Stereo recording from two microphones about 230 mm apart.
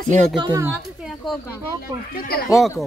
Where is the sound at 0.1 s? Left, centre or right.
Centre.